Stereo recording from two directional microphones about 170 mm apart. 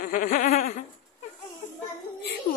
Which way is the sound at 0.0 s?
50° left (ahead or behind).